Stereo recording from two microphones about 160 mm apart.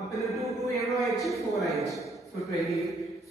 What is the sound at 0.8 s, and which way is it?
Speech, centre (ahead or behind).